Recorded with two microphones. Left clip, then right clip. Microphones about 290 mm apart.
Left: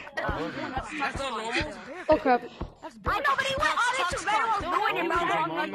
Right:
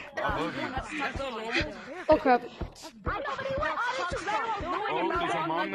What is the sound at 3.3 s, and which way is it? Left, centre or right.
Music, left.